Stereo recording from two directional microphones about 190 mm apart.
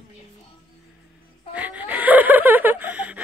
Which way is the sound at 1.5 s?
10° right (ahead or behind).